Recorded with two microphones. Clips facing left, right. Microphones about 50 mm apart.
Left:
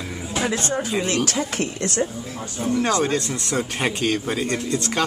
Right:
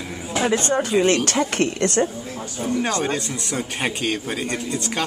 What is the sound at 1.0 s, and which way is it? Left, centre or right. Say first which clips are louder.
Speech: right 4 dB; right.